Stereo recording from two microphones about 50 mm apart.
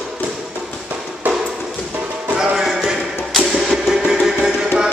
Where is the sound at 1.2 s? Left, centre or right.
Right.